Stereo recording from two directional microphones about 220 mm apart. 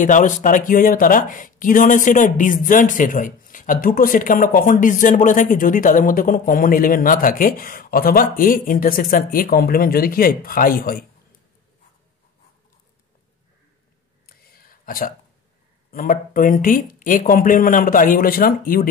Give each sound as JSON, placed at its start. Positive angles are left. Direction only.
{"t": 0.0, "sound": "speech", "side_deg": 35}
{"t": 14.2, "sound": "a sound", "side_deg": 40}
{"t": 15.9, "sound": "speech", "side_deg": 40}